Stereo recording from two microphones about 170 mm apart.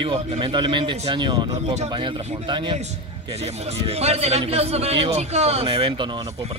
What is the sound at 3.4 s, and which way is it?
A man's voice, 40° right (ahead or behind).